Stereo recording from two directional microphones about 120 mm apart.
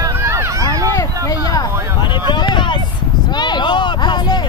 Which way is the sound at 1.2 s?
30° left (ahead or behind).